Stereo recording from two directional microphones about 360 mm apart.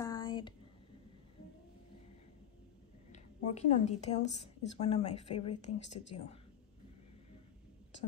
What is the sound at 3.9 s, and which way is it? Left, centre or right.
A woman's voice, centre.